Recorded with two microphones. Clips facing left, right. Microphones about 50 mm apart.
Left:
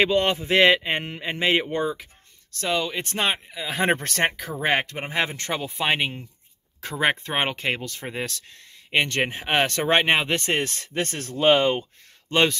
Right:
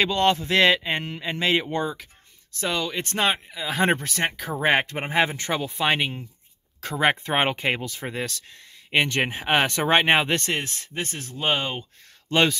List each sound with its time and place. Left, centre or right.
0.0 s speech: centre
4.5 s speech: centre
4.8 s speech: right
5.2 s speech: centre
5.5 s speech: centre
7.2 s speech: centre
8.1 s speech: centre
10.5 s speech: left
12.3 s speech: centre